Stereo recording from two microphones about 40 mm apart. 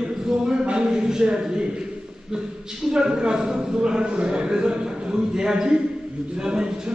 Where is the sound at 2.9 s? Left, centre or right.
Right.